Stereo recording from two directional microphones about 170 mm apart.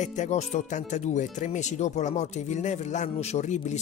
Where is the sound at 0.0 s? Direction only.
45° left (ahead or behind).